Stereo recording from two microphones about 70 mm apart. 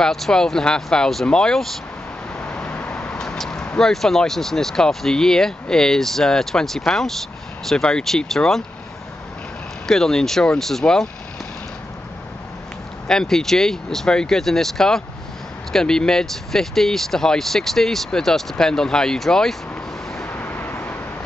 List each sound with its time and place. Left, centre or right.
0.0 s speech: centre
2.3 s vehicle: centre
3.7 s speech: centre
9.8 s speech: centre
13.1 s speech: centre
20.2 s vehicle: left